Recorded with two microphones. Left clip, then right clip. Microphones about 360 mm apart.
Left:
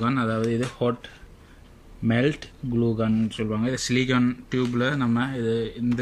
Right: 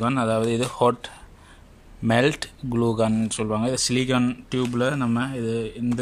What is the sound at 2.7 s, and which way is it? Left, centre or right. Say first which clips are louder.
Speech: right 2 dB; right.